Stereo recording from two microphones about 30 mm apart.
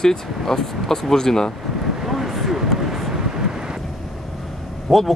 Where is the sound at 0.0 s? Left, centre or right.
Centre.